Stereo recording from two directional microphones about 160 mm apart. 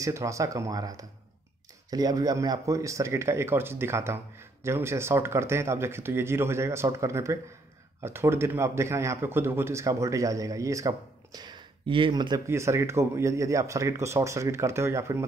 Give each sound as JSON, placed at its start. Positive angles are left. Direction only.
{"t": 0.0, "sound": "a man's voice", "side_deg": -20}